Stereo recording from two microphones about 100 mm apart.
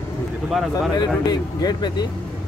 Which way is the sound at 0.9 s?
45° left (ahead or behind).